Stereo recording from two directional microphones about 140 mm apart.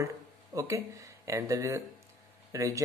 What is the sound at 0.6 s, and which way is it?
Speech, 20° right (ahead or behind).